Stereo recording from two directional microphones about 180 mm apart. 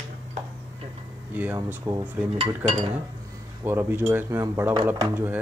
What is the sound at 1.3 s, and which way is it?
Speech, 10° right (ahead or behind).